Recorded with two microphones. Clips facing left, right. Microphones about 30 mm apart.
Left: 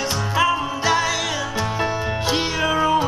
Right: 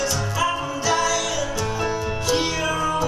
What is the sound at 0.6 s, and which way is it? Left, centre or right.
Music, left.